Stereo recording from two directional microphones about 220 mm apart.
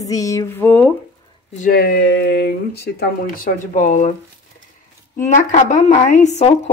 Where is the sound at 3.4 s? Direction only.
35° left (ahead or behind).